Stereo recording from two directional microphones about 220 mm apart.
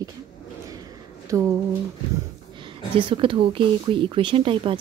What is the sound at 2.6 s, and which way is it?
Speech, 20° right (ahead or behind).